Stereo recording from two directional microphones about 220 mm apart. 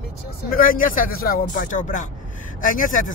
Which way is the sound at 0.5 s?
40° left (ahead or behind).